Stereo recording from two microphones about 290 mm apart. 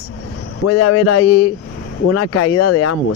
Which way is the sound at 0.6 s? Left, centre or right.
Left.